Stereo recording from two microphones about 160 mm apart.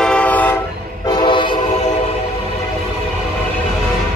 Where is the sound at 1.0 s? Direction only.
25° left (ahead or behind).